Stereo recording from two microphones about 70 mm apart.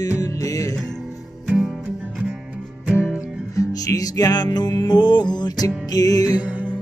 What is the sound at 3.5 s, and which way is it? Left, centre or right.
Music, left.